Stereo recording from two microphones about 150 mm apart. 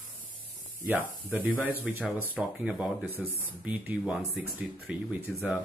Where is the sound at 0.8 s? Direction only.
10° right (ahead or behind).